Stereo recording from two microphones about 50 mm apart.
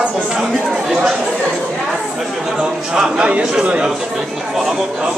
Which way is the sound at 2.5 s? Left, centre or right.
Centre.